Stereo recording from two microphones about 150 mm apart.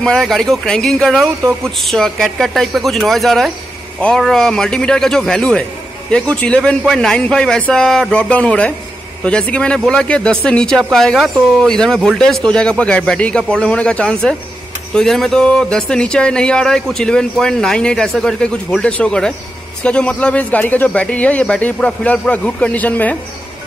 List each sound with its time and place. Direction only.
0.0 s a man's voice: centre (ahead or behind)